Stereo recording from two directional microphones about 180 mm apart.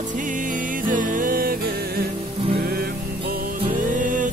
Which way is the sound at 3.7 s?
50° right (ahead or behind).